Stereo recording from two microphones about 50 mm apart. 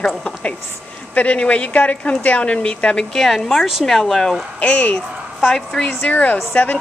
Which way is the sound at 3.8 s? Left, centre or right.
Centre.